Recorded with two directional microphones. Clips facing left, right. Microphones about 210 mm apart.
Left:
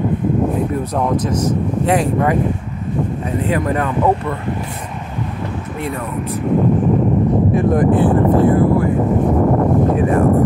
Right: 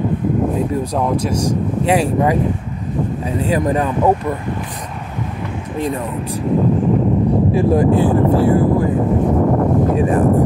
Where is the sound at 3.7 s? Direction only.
15° right (ahead or behind).